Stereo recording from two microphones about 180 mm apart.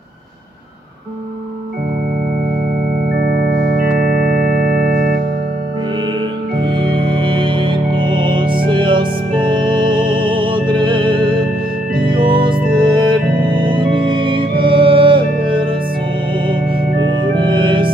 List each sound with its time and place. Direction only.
4.0 s music: 50° right (ahead or behind)
6.7 s music: 25° right (ahead or behind)
17.1 s music: 25° right (ahead or behind)